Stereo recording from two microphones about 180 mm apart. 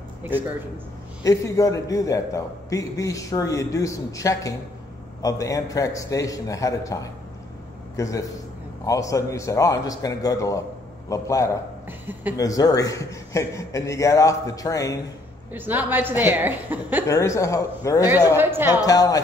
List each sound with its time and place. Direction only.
0.2 s a man's voice: 10° right (ahead or behind)
1.2 s a man's voice: 20° left (ahead or behind)
12.1 s a woman's voice: 10° right (ahead or behind)
12.4 s a man's voice: 20° left (ahead or behind)
15.5 s a woman's voice: 10° right (ahead or behind)
17.1 s a man's voice: 15° left (ahead or behind)
18.0 s a woman's voice: 10° right (ahead or behind)
18.7 s a man's voice: 20° left (ahead or behind)